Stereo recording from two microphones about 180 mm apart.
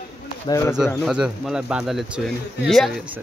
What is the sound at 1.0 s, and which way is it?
Speech, 5° right (ahead or behind).